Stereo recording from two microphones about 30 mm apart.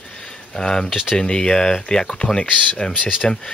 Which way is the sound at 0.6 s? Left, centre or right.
Left.